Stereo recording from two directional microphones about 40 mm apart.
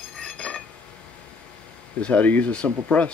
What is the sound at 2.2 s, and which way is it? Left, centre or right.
Speech, left.